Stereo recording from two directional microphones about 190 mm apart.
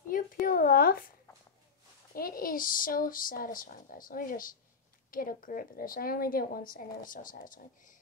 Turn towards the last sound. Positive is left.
turn(degrees=45)  # may be behind; listen again after turning